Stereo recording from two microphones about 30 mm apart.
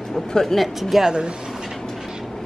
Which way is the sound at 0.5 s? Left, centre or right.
Centre.